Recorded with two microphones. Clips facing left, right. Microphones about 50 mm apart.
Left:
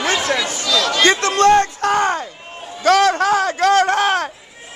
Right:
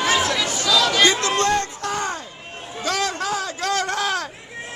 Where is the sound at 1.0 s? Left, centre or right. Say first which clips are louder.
Left 5 dB; left.